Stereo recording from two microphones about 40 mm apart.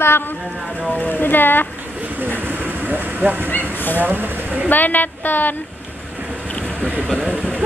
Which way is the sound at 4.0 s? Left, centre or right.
Right.